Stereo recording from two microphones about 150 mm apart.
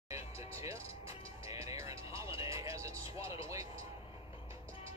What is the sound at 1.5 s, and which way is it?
Music, 20° right (ahead or behind).